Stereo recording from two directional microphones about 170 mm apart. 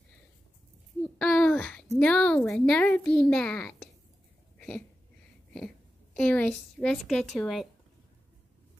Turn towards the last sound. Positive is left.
turn(degrees=0)  # may be behind; listen again after turning